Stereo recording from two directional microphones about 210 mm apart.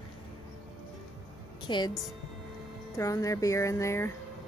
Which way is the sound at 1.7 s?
20° left (ahead or behind).